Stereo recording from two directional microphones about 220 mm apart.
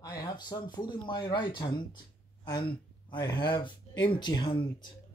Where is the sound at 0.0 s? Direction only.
15° left (ahead or behind).